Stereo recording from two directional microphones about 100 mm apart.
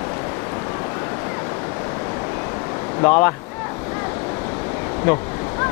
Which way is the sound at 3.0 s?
20° left (ahead or behind).